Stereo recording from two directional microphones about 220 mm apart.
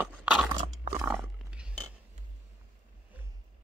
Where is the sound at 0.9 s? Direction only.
5° right (ahead or behind).